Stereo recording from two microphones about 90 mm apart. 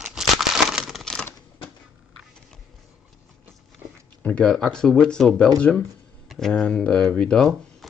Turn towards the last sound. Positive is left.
turn(degrees=10)  # may be behind; listen again after turning